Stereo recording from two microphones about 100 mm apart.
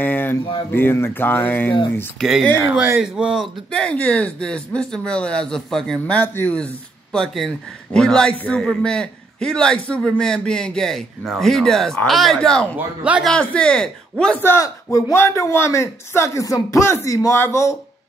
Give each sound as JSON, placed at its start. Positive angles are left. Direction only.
{"t": 0.0, "sound": "a sound", "side_deg": 20}
{"t": 0.7, "sound": "speech", "side_deg": 20}
{"t": 2.1, "sound": "speech", "side_deg": -5}
{"t": 2.7, "sound": "speech", "side_deg": -15}
{"t": 3.7, "sound": "speech", "side_deg": 10}
{"t": 12.7, "sound": "speech", "side_deg": -15}
{"t": 13.4, "sound": "speech", "side_deg": 10}
{"t": 14.4, "sound": "speech", "side_deg": 25}